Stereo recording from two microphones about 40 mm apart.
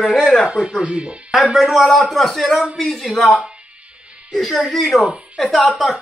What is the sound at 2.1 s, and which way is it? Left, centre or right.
Speech, centre.